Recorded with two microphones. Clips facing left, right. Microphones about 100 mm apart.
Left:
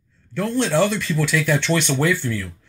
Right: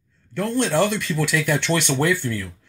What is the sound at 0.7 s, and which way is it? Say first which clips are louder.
Speech: left 1 dB; 15° right (ahead or behind).